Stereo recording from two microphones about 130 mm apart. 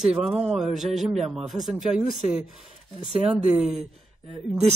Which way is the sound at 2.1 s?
5° right (ahead or behind).